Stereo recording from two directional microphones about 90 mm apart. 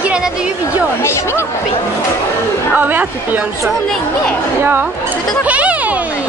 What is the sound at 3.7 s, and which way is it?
Speech, 5° left (ahead or behind).